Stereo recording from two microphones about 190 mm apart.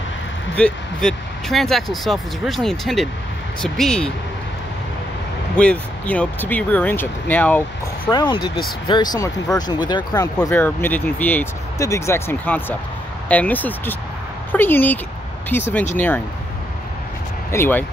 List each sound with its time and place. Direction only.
0.6 s speech: 5° left (ahead or behind)
5.6 s speech: 5° left (ahead or behind)
8.1 s speech: 25° left (ahead or behind)
17.5 s speech: 10° left (ahead or behind)